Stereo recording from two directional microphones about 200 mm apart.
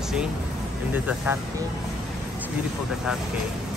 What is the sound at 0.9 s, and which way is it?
Speech, 10° right (ahead or behind).